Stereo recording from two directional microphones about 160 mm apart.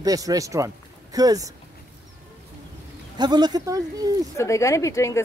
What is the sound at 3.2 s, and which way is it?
Speech, 25° right (ahead or behind).